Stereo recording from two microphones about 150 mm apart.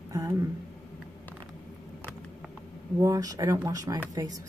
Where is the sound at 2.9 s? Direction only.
25° right (ahead or behind).